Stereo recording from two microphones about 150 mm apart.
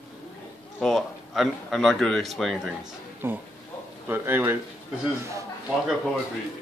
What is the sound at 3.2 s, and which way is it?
Speech, 15° right (ahead or behind).